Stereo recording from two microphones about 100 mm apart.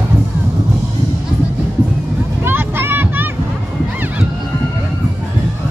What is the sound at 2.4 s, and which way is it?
Vehicle, 20° right (ahead or behind).